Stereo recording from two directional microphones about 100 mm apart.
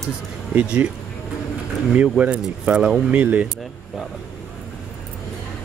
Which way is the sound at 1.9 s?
15° right (ahead or behind).